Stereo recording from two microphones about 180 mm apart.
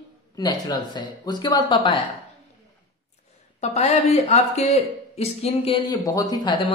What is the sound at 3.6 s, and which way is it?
Speech, 40° left (ahead or behind).